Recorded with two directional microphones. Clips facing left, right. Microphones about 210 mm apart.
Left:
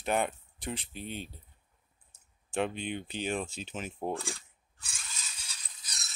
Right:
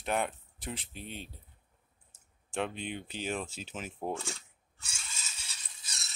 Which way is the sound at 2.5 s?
Centre (ahead or behind).